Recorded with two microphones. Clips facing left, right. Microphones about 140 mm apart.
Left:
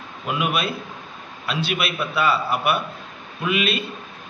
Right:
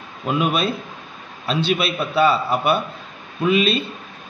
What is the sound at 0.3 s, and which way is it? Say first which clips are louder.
A man's voice: right 4 dB; 30° right (ahead or behind).